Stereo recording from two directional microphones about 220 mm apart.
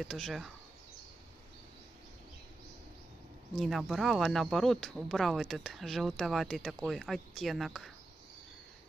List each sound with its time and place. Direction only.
0.0 s speech: centre (ahead or behind)
3.5 s speech: centre (ahead or behind)